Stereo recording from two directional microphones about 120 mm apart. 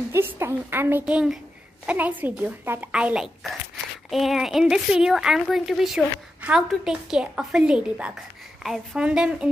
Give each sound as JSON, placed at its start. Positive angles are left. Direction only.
{"t": 0.1, "sound": "a woman's voice", "side_deg": -20}
{"t": 1.0, "sound": "a woman's voice", "side_deg": -5}